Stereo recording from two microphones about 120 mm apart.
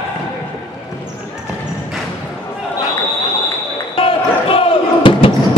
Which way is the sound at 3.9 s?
50° left (ahead or behind).